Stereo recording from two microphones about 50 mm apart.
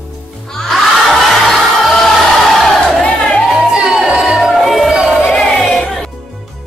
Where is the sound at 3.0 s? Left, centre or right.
Left.